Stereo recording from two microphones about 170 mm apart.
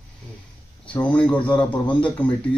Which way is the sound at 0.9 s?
5° left (ahead or behind).